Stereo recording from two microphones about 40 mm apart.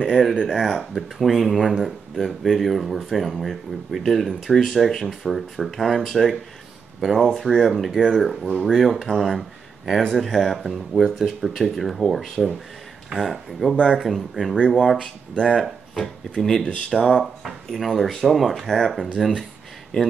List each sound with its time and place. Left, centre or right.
0.1 s speech: centre
16.9 s speech: centre
19.9 s speech: centre